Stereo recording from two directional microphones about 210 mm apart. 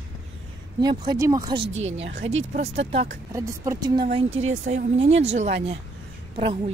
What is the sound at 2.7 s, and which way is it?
Speech, 30° right (ahead or behind).